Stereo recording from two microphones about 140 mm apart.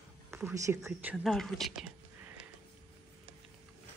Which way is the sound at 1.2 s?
Centre (ahead or behind).